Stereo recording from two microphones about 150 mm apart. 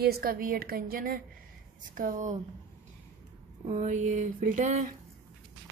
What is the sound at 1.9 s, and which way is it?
Speech, 60° right (ahead or behind).